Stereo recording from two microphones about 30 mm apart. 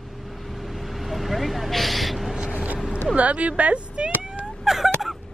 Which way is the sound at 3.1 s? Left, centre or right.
Right.